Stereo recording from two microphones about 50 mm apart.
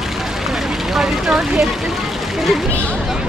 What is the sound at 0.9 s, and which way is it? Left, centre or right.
Speech, centre.